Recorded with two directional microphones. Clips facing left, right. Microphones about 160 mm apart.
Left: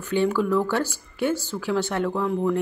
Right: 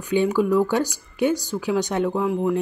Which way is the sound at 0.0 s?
15° right (ahead or behind).